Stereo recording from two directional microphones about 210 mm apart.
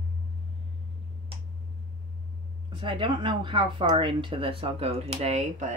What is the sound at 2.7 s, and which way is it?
Speech, 25° right (ahead or behind).